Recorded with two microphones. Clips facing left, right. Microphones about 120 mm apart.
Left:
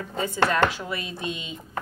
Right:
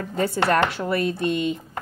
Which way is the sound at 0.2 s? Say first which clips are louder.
Right 2 dB; 65° right (ahead or behind).